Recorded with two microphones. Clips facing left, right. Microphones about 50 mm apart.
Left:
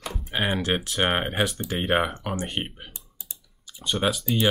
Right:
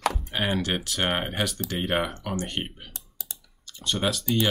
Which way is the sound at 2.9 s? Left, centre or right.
Right.